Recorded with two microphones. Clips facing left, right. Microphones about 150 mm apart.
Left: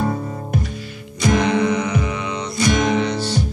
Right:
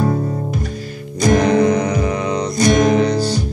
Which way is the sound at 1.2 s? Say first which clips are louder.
Right 4 dB; 40° right (ahead or behind).